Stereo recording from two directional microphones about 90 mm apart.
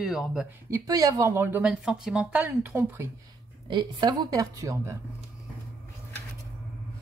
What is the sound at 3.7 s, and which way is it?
A woman's voice, 45° right (ahead or behind).